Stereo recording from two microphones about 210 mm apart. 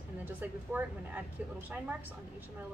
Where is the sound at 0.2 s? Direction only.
10° right (ahead or behind).